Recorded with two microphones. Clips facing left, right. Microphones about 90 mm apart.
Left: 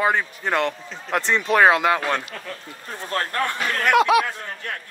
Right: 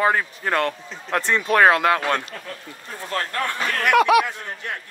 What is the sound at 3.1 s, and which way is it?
Speech, 35° left (ahead or behind).